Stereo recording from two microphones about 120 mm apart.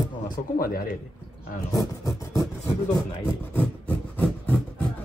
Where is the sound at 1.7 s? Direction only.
30° left (ahead or behind).